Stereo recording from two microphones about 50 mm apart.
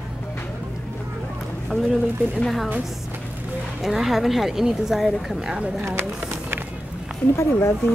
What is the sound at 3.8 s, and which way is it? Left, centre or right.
Speech, centre.